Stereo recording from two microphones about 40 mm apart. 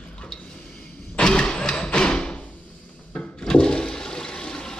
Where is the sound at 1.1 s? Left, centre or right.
Left.